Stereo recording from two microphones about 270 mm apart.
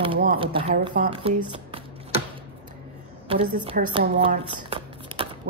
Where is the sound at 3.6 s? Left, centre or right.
Centre.